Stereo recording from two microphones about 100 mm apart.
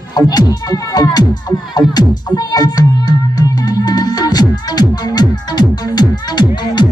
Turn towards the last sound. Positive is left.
turn(degrees=45)  # may be behind; listen again after turning